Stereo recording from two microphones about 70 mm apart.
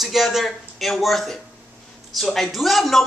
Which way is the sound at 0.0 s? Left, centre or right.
Centre.